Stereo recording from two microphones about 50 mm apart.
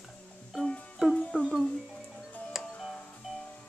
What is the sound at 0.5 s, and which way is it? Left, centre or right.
Music, centre.